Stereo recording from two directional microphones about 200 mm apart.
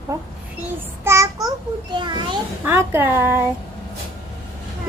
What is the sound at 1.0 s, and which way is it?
Child singing, 15° right (ahead or behind).